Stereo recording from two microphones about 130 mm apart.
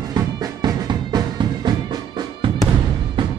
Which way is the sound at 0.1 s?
30° right (ahead or behind).